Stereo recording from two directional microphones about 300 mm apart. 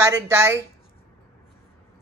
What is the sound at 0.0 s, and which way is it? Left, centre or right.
Speech, centre.